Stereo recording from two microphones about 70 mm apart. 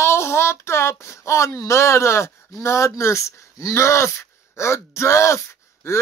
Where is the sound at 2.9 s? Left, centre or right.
Left.